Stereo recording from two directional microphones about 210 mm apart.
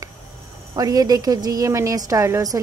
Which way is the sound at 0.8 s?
15° right (ahead or behind).